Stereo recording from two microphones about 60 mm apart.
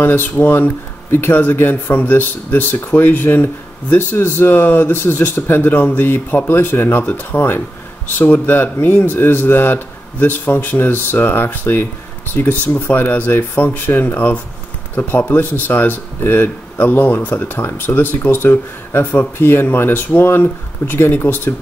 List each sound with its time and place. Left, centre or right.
0.0 s speech: left